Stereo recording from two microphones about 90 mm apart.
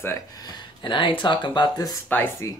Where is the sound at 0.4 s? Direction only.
60° left (ahead or behind).